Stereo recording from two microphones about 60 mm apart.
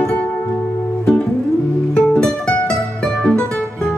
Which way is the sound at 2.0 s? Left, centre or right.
Centre.